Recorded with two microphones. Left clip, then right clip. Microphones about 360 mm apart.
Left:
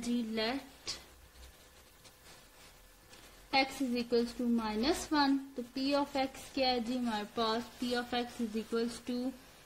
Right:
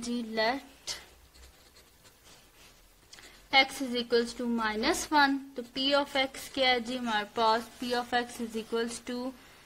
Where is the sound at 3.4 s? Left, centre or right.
Right.